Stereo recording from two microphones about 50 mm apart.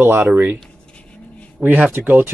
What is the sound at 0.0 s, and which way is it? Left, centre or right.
Speech, right.